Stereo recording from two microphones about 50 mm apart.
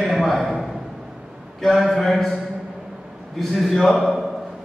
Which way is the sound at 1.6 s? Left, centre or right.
Centre.